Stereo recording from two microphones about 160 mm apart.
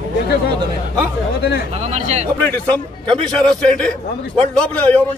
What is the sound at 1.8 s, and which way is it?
Speech, 45° right (ahead or behind).